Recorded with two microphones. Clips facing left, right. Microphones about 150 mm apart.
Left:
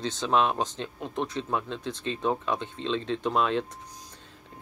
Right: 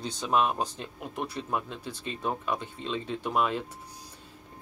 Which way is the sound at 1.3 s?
10° right (ahead or behind).